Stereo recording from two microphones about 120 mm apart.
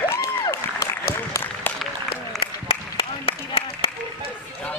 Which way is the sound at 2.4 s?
50° left (ahead or behind).